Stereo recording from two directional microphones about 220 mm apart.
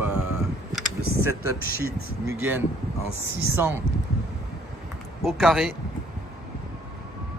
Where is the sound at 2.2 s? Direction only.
10° right (ahead or behind).